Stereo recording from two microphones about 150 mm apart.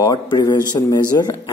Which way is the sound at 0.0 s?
25° left (ahead or behind).